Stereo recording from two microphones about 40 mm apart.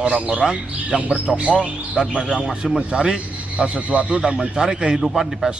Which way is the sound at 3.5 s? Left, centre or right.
Right.